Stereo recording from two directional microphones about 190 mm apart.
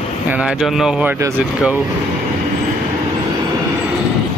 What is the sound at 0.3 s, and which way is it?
Speech, 5° right (ahead or behind).